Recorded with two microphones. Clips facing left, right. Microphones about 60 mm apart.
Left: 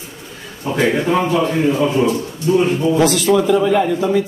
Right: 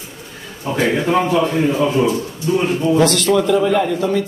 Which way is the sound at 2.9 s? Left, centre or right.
Centre.